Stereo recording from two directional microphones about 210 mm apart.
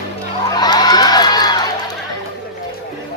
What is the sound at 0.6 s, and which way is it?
Crowd, 20° left (ahead or behind).